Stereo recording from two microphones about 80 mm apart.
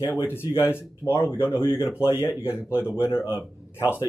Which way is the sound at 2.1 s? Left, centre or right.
Centre.